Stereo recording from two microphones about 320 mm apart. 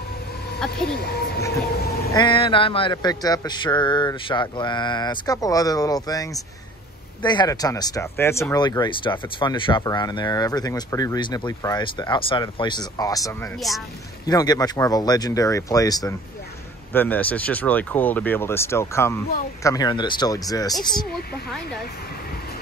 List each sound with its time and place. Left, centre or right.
0.8 s speech: left
2.1 s speech: centre
14.2 s speech: centre